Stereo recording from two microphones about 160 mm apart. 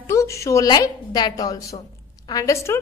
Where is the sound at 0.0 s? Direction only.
20° left (ahead or behind).